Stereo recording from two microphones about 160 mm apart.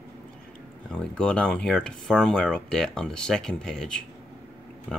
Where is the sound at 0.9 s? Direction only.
5° left (ahead or behind).